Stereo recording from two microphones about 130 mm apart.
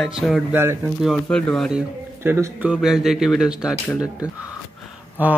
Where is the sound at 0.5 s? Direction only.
20° right (ahead or behind).